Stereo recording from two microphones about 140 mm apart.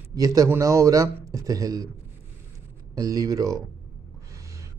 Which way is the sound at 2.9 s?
25° right (ahead or behind).